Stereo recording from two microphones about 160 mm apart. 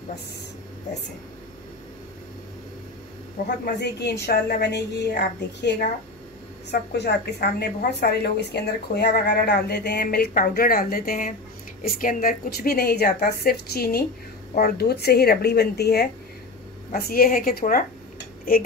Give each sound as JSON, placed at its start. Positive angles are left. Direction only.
{"t": 3.4, "sound": "a woman's voice", "side_deg": 75}
{"t": 6.7, "sound": "a woman's voice", "side_deg": 90}
{"t": 16.9, "sound": "a woman's voice", "side_deg": 65}